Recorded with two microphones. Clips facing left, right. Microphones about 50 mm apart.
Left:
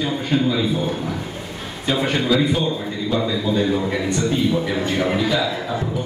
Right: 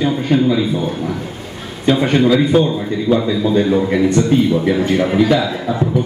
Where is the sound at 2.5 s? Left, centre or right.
Right.